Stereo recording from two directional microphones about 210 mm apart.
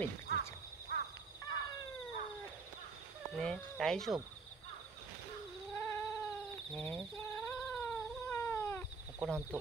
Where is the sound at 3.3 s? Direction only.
5° left (ahead or behind).